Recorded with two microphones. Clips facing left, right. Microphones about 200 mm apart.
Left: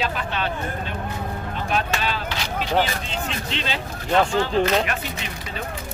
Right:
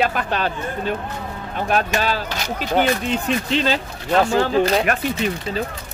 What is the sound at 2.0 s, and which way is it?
Speech, 40° right (ahead or behind).